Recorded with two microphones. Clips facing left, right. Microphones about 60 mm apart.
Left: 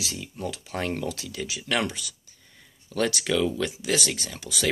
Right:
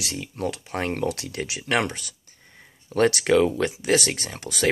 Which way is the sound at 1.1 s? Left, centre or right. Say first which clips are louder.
Right 4 dB; right.